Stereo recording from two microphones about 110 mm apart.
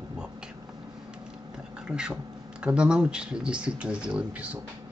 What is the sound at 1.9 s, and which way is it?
Speech, 10° right (ahead or behind).